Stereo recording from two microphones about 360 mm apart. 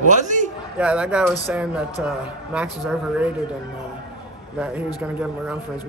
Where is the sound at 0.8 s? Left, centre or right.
Centre.